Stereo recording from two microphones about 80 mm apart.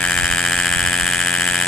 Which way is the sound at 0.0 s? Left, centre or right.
Centre.